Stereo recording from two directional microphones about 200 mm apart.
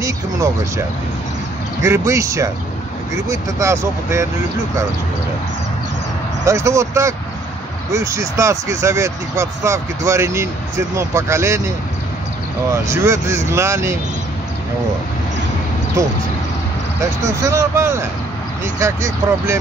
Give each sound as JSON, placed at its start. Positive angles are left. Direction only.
{"t": 1.8, "sound": "speech", "side_deg": -15}
{"t": 6.4, "sound": "speech", "side_deg": -15}
{"t": 12.7, "sound": "speech", "side_deg": -15}
{"t": 17.2, "sound": "speech", "side_deg": -15}